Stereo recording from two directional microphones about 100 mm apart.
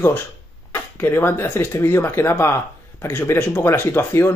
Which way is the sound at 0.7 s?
20° left (ahead or behind).